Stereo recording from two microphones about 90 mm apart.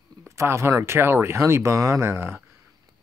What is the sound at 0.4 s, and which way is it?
Speech, 30° right (ahead or behind).